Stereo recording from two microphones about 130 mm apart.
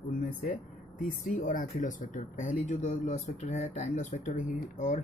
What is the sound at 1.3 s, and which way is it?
Speech, 90° left.